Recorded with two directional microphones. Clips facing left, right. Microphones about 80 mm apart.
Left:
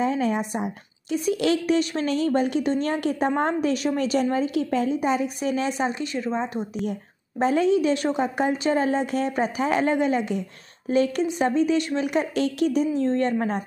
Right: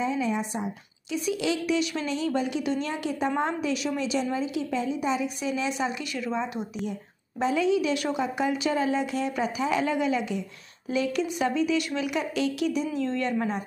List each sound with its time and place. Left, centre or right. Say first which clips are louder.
0.0 s a woman's voice: left 4 dB; left
6.9 s a woman's voice: left 4 dB; left